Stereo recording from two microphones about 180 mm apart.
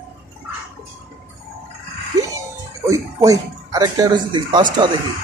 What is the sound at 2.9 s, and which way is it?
Speech, 20° right (ahead or behind).